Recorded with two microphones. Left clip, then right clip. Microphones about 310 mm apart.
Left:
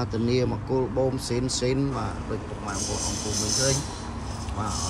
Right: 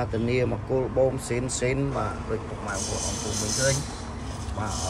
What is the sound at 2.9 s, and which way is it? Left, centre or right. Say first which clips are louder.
Speech: left 1 dB; left.